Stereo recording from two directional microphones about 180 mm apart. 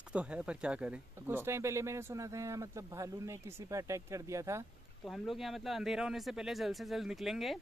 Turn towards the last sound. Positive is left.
turn(degrees=0)  # may be behind; listen again after turning